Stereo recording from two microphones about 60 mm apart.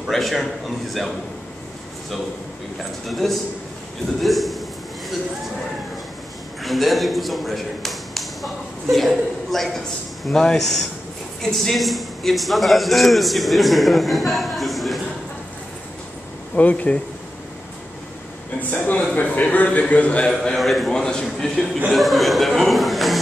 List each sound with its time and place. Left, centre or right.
0.1 s a man's voice: centre
2.8 s a man's voice: centre
6.6 s a man's voice: centre
16.5 s a man's voice: left
18.6 s a man's voice: left
20.5 s a man's voice: centre
20.9 s speech: centre
21.9 s speech: centre